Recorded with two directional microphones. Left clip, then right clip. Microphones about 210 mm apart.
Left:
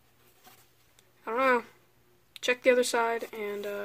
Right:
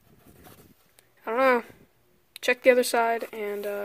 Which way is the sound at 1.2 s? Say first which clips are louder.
Right 4 dB; 35° right (ahead or behind).